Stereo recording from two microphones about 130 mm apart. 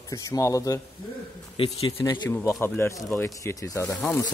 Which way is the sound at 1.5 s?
45° left (ahead or behind).